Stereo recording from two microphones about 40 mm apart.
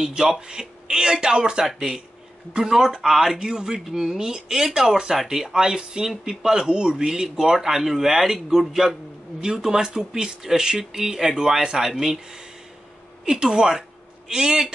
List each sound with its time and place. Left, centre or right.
0.0 s speech: centre
1.7 s speech: centre
5.1 s speech: centre
13.2 s speech: centre